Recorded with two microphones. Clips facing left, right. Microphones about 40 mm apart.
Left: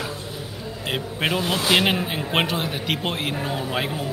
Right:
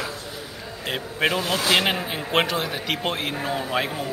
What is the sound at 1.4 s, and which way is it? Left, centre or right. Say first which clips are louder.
A man's voice: left 4 dB; centre.